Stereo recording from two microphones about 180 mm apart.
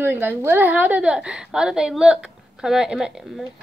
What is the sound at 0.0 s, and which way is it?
A woman's voice, 10° right (ahead or behind).